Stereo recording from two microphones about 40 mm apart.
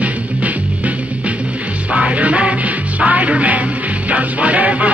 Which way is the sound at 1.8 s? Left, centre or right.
Right.